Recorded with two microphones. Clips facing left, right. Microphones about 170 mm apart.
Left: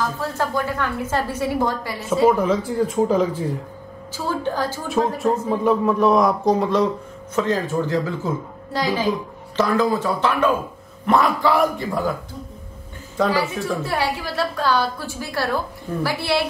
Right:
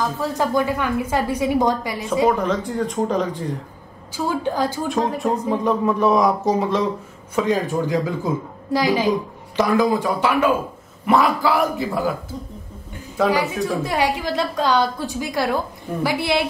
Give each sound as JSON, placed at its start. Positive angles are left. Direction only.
{"t": 0.2, "sound": "a woman's voice", "side_deg": -15}
{"t": 2.2, "sound": "speech", "side_deg": 5}
{"t": 4.3, "sound": "a woman's voice", "side_deg": -15}
{"t": 4.8, "sound": "speech", "side_deg": 0}
{"t": 7.3, "sound": "a woman's voice", "side_deg": -10}
{"t": 13.3, "sound": "a woman's voice", "side_deg": -15}